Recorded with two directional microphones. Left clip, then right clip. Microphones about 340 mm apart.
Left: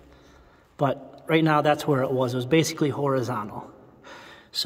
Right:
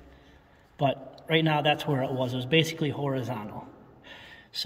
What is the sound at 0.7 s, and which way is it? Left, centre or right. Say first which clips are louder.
A man's voice: left 2 dB; left.